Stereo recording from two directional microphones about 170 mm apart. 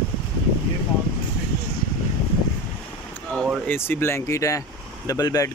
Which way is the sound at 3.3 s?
Centre (ahead or behind).